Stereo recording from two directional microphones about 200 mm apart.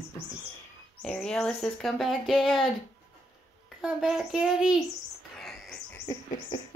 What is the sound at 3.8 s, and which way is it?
A child's voice, centre (ahead or behind).